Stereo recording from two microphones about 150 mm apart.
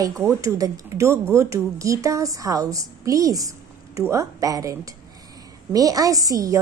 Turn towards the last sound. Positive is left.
turn(degrees=-25)  # may be behind; listen again after turning